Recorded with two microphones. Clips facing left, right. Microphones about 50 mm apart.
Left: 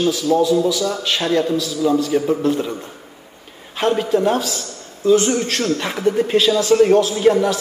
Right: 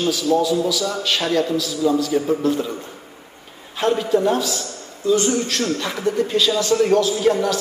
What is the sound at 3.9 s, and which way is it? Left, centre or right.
A man's voice, left.